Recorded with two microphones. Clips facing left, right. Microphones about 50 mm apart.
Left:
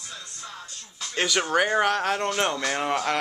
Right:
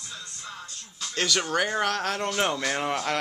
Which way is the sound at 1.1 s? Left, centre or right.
Centre.